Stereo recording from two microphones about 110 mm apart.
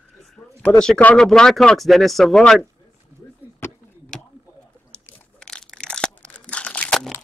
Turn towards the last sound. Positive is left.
turn(degrees=15)  # may be behind; listen again after turning